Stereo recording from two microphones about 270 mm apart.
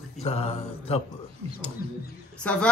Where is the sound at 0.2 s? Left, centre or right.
Left.